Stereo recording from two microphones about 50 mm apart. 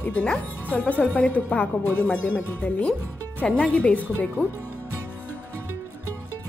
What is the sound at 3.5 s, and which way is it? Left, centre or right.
Speech, centre.